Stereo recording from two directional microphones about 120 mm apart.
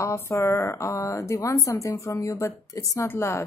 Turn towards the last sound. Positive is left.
turn(degrees=20)  # may be behind; listen again after turning